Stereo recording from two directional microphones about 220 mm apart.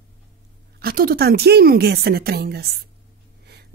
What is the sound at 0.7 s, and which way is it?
Speech, 45° right (ahead or behind).